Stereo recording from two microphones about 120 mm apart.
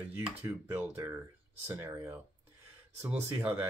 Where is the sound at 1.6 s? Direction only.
20° right (ahead or behind).